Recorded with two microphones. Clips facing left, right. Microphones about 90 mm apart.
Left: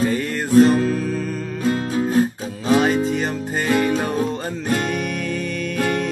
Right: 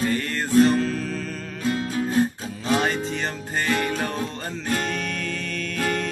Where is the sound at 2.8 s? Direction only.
5° left (ahead or behind).